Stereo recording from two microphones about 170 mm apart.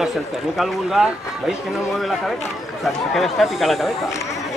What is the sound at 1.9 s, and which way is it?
Speech, centre (ahead or behind).